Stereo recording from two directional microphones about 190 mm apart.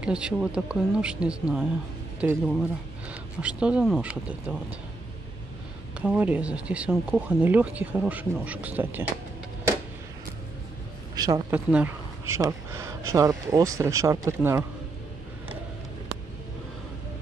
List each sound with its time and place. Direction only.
0.0 s speech: 5° right (ahead or behind)
5.9 s speech: 5° right (ahead or behind)
11.1 s speech: 20° right (ahead or behind)